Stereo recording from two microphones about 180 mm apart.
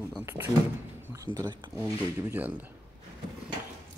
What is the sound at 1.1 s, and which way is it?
Speech, 20° right (ahead or behind).